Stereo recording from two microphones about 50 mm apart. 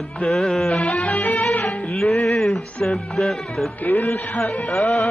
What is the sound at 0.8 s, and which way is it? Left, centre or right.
Music, left.